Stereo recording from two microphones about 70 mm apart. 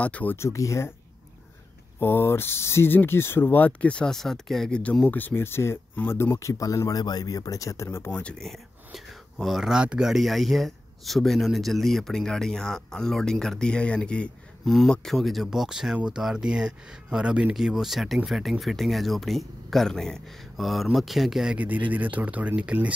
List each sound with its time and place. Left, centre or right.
0.0 s speech: left
0.4 s speech: left
2.0 s speech: left; by 4.7 s centre
5.0 s speech: left
6.3 s speech: left
8.1 s speech: centre
8.5 s speech: centre
14.6 s speech: centre
21.5 s speech: right